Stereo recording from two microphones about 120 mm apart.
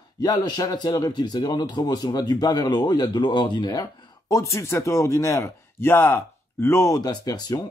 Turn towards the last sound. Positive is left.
turn(degrees=35)  # may be behind; listen again after turning